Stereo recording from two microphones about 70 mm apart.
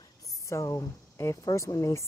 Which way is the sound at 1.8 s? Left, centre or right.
Left.